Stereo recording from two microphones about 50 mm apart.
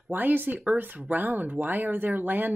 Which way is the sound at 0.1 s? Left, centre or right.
Right.